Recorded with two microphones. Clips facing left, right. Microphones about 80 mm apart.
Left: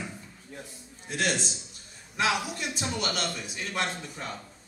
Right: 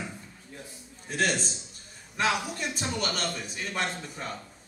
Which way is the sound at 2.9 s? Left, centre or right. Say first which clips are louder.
Left 1 dB; right.